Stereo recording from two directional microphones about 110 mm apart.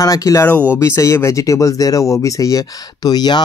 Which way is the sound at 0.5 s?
15° left (ahead or behind).